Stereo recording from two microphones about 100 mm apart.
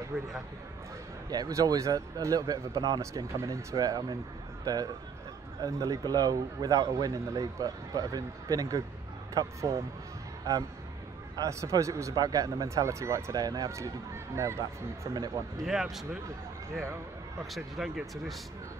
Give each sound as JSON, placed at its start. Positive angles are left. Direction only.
{"t": 0.1, "sound": "speech", "side_deg": -25}
{"t": 1.3, "sound": "speech", "side_deg": -40}
{"t": 11.3, "sound": "speech", "side_deg": -35}
{"t": 15.1, "sound": "speech", "side_deg": -40}
{"t": 15.6, "sound": "speech", "side_deg": -5}
{"t": 17.6, "sound": "speech", "side_deg": 0}